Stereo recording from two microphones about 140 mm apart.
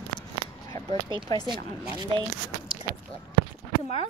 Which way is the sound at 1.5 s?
35° right (ahead or behind).